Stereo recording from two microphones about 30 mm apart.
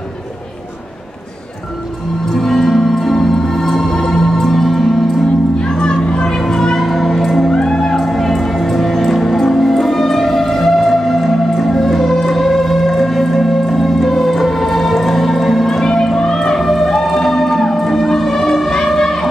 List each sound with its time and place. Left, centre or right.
2.3 s music: centre
3.9 s music: centre
5.8 s music: left
6.8 s music: centre
7.5 s music: centre
8.0 s music: centre
18.0 s siren: centre
18.9 s a sound: centre